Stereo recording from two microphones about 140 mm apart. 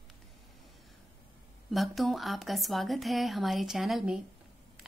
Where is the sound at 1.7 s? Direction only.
Centre (ahead or behind).